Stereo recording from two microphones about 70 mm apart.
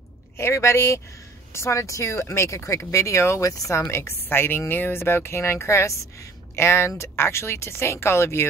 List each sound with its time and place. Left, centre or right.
0.4 s speech: left